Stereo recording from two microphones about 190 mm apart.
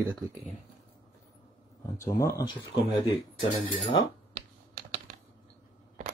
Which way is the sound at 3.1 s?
30° left (ahead or behind).